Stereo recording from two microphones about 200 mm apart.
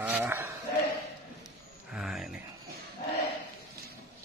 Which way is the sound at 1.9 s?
Centre (ahead or behind).